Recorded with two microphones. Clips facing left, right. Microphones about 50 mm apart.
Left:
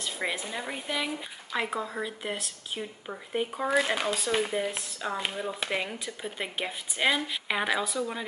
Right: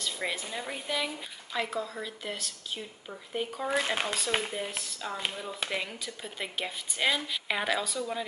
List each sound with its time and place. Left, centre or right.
0.0 s speech: centre
1.7 s speech: left